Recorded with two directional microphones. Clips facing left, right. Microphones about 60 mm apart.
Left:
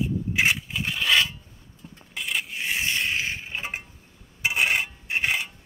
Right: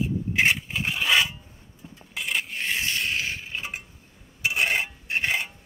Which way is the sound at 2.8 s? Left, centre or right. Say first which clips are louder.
Left 3 dB; left.